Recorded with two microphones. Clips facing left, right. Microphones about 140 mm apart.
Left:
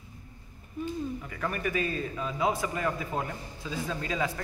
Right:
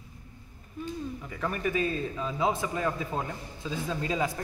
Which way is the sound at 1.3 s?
5° right (ahead or behind).